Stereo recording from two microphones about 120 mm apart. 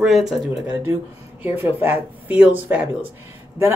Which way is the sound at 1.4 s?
15° right (ahead or behind).